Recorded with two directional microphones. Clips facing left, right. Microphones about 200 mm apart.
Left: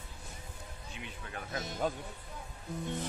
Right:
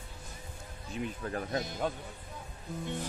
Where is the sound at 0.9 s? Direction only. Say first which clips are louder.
Right 10 dB; 40° right (ahead or behind).